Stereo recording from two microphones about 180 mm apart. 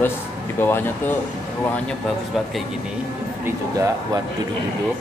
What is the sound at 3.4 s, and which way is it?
Speech, 20° right (ahead or behind).